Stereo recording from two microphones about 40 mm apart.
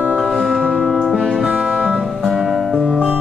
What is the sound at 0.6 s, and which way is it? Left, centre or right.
Music, left.